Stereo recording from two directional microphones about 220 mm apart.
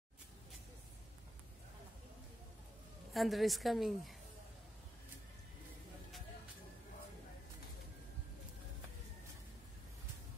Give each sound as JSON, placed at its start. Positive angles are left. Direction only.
{"t": 3.1, "sound": "a woman's voice", "side_deg": 0}